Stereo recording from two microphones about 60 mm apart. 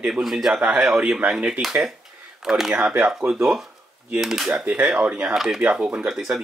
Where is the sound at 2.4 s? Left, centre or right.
Centre.